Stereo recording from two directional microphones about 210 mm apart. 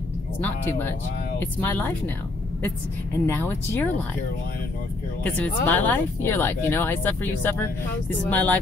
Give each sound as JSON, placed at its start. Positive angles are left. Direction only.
{"t": 0.4, "sound": "speech", "side_deg": 10}
{"t": 3.3, "sound": "speech", "side_deg": 10}
{"t": 5.2, "sound": "speech", "side_deg": 10}